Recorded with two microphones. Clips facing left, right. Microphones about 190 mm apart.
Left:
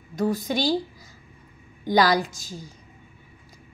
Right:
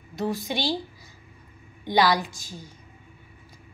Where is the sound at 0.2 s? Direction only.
45° left (ahead or behind).